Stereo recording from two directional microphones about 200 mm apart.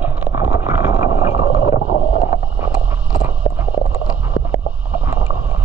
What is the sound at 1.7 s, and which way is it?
Boat, 75° left (ahead or behind).